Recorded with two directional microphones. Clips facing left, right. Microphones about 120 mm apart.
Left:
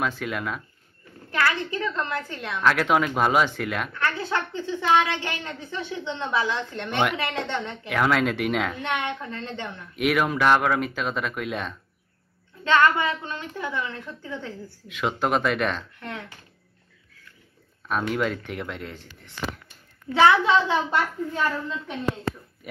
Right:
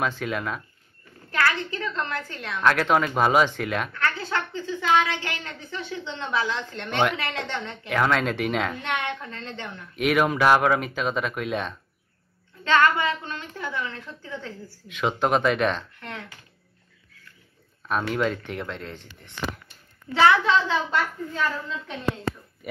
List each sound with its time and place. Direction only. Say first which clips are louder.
0.0 s speech: right 1 dB; centre (ahead or behind)
1.3 s a woman's voice: even; 15° left (ahead or behind)
2.6 s speech: even; 5° left (ahead or behind)
3.9 s a woman's voice: left 1 dB; 15° left (ahead or behind)
7.9 s speech: even; 5° left (ahead or behind)
8.8 s a woman's voice: left 1 dB; 20° left (ahead or behind)
9.9 s speech: right 1 dB; centre (ahead or behind)
12.6 s a woman's voice: even; 20° left (ahead or behind)
14.9 s speech: right 1 dB; centre (ahead or behind)
16.0 s a woman's voice: left 2 dB; 15° left (ahead or behind)
17.8 s speech: even; centre (ahead or behind)
20.2 s a woman's voice: left 1 dB; 15° left (ahead or behind)